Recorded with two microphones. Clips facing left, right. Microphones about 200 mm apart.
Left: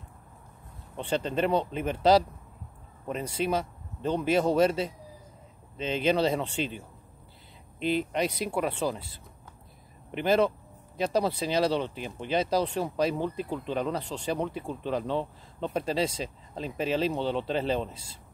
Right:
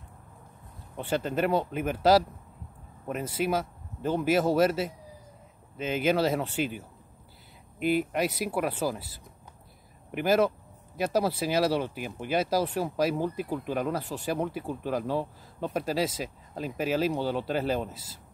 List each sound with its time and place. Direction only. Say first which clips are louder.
0.9 s speech: even; 5° right (ahead or behind)
7.8 s speech: right 1 dB; 10° right (ahead or behind)
10.1 s speech: even; 5° right (ahead or behind)